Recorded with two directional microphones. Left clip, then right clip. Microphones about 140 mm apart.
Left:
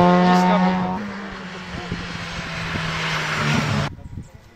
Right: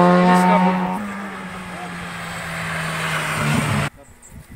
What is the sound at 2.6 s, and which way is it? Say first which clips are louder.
Vehicle: right 1 dB; 35° left (ahead or behind).